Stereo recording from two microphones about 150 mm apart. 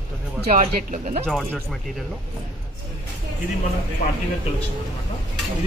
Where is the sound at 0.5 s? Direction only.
60° right (ahead or behind).